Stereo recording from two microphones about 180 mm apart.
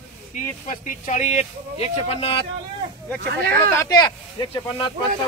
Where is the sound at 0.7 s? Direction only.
45° left (ahead or behind).